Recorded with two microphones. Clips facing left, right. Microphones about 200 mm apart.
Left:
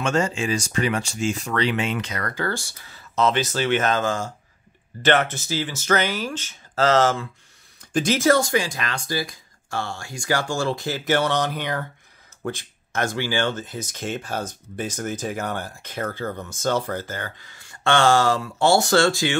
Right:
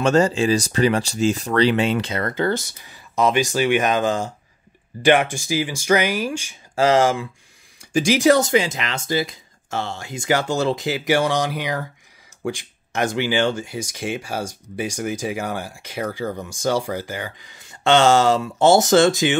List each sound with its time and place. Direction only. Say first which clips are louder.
0.0 s speech: right 6 dB; 35° right (ahead or behind); by 19.3 s 20° right (ahead or behind)